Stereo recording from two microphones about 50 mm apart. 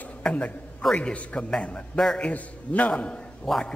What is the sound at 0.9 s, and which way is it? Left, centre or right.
Speech, left.